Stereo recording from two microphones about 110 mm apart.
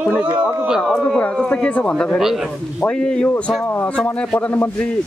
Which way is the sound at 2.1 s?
5° right (ahead or behind).